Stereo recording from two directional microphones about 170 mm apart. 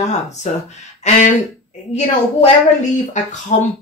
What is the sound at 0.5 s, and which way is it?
Speech, 45° left (ahead or behind).